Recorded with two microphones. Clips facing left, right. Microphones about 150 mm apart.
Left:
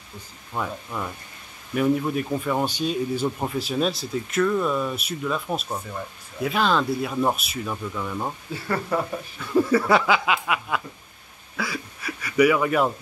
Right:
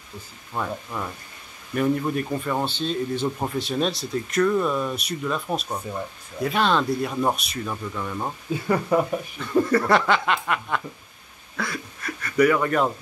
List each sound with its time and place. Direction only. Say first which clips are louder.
0.5 s speech: right 1 dB; centre (ahead or behind)
8.6 s speech: right 4 dB; 15° right (ahead or behind)
9.4 s a sound: left 1 dB; 5° left (ahead or behind)